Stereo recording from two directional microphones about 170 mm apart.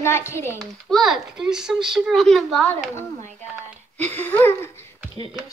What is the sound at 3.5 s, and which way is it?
Speech, 10° right (ahead or behind).